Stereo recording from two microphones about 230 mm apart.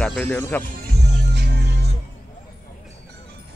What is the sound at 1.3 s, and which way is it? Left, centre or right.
Music, right.